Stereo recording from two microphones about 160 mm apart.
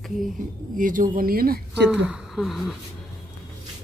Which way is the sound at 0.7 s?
55° right (ahead or behind).